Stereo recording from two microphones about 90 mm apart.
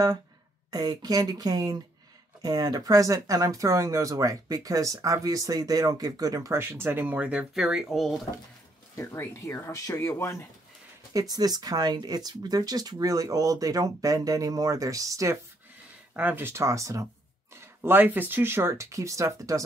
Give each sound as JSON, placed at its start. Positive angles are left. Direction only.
{"t": 0.7, "sound": "speech", "side_deg": -50}
{"t": 6.6, "sound": "speech", "side_deg": -25}
{"t": 7.5, "sound": "speech", "side_deg": -5}
{"t": 8.9, "sound": "speech", "side_deg": 30}
{"t": 11.1, "sound": "speech", "side_deg": -45}
{"t": 16.2, "sound": "speech", "side_deg": -20}
{"t": 17.6, "sound": "speech", "side_deg": -25}